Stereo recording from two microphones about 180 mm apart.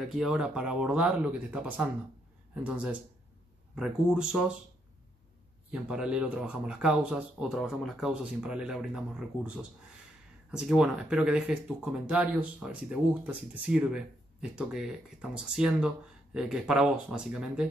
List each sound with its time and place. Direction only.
0.1 s speech: 5° right (ahead or behind)
5.7 s speech: 5° right (ahead or behind)